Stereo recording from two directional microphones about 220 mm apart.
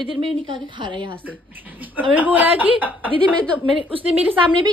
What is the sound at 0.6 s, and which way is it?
Speech, 20° right (ahead or behind).